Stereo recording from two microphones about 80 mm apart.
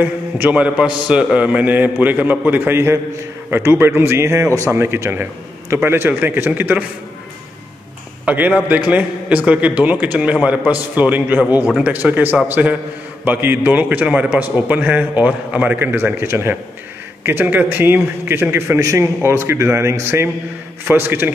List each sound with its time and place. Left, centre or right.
0.0 s a man's voice: right
8.3 s a man's voice: centre